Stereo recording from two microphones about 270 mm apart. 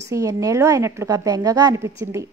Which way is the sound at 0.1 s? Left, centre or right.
Centre.